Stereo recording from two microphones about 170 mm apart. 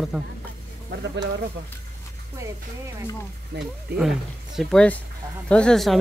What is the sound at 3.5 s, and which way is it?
Speech, 85° right.